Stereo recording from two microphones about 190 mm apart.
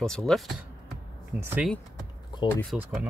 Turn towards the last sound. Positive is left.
turn(degrees=-5)  # may be behind; listen again after turning